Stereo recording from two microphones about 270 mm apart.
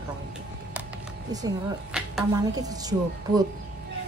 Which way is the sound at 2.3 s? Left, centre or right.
Centre.